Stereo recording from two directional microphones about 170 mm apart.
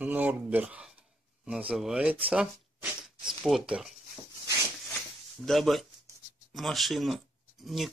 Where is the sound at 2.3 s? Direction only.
5° right (ahead or behind).